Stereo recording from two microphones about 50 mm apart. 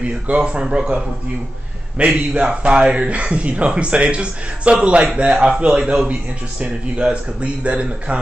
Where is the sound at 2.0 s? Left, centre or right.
Right.